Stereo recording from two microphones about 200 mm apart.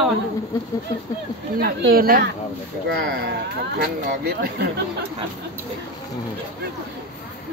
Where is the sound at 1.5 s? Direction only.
50° right (ahead or behind).